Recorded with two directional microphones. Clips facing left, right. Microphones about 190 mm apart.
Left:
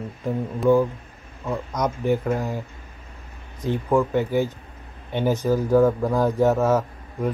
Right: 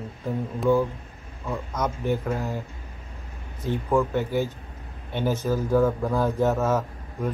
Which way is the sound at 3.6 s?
15° left (ahead or behind).